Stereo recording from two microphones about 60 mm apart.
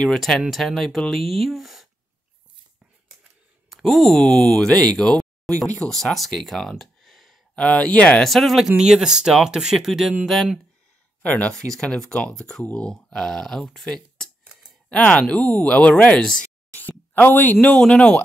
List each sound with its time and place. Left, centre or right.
0.0 s speech: centre
3.6 s speech: centre
4.9 s a sound: centre
5.8 s speech: centre
6.1 s a sound: centre
7.6 s speech: centre
8.2 s speech: centre
8.6 s speech: centre
11.2 s speech: left
11.7 s speech: centre
13.8 s a sound: centre
14.9 s speech: centre
17.1 s speech: left
17.7 s speech: centre